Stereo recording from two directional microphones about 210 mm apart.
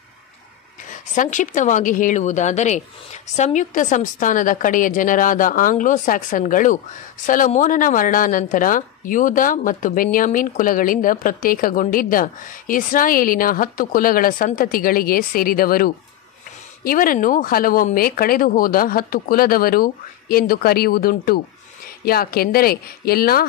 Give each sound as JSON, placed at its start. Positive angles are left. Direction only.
{"t": 0.8, "sound": "a woman's voice", "side_deg": 35}